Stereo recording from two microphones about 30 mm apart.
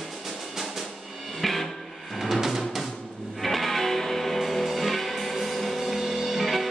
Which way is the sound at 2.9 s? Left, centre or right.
Centre.